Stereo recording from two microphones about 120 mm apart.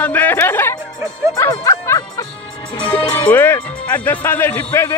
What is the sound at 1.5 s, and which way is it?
Music, 30° left (ahead or behind).